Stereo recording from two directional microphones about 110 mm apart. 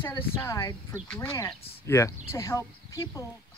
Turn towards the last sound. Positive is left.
turn(degrees=30)  # may be behind; listen again after turning